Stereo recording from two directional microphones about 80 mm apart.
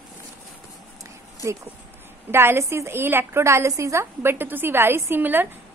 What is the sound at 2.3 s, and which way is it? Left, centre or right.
A woman's voice, right.